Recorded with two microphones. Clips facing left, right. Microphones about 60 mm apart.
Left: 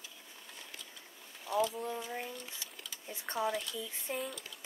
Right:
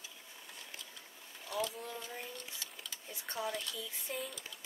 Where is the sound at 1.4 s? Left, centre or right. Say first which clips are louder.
Left 6 dB; centre.